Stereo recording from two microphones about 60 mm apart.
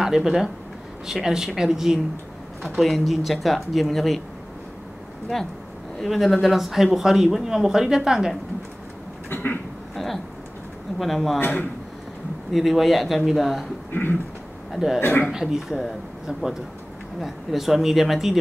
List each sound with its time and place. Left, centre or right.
0.0 s speech: centre
5.3 s speech: centre
9.3 s a sound: left
9.9 s speech: centre
11.3 s speech: left
12.5 s speech: centre
14.7 s a man's voice: centre
15.0 s speech: left
15.3 s speech: centre